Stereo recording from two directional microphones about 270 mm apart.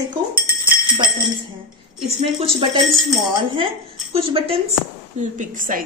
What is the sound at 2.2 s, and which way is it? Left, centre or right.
Speech, right.